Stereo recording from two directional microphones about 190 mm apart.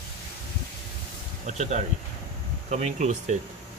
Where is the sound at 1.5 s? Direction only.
40° right (ahead or behind).